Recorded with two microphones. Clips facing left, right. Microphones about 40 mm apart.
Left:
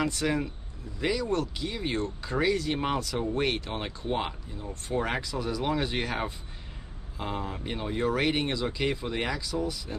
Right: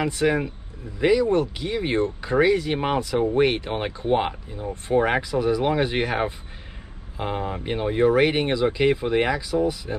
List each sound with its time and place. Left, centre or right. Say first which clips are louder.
0.0 s speech: right 6 dB; centre